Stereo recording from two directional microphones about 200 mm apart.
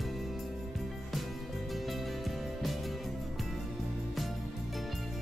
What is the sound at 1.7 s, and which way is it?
Music, centre (ahead or behind).